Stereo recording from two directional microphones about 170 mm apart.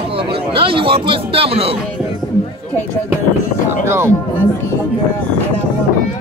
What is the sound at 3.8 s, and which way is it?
Speech, 15° right (ahead or behind).